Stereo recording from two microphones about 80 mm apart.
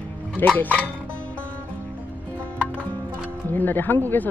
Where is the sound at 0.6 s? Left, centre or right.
Centre.